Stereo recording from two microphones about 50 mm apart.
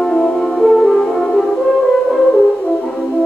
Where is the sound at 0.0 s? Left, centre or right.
Centre.